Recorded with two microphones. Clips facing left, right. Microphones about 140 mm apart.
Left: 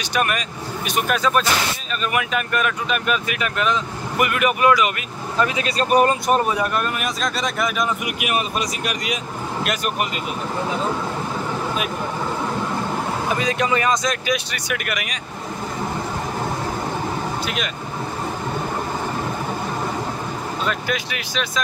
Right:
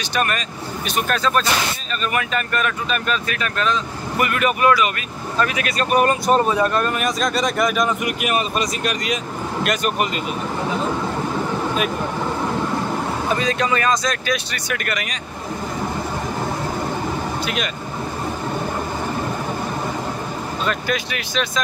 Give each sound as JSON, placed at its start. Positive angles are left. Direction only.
{"t": 0.1, "sound": "speech", "side_deg": 10}
{"t": 6.3, "sound": "speech", "side_deg": 10}
{"t": 13.4, "sound": "speech", "side_deg": 15}
{"t": 20.6, "sound": "speech", "side_deg": 5}